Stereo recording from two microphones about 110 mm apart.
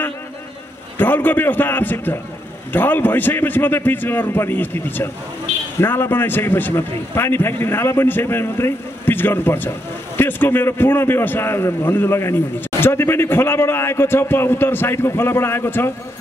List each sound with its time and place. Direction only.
0.9 s a man's voice: 15° left (ahead or behind)